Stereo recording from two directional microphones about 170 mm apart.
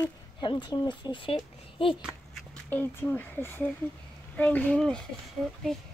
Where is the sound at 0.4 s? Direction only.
25° left (ahead or behind).